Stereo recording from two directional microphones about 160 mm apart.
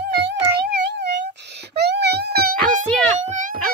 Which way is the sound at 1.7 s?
90° right.